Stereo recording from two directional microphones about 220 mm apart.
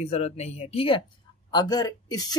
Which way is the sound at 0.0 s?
30° left (ahead or behind).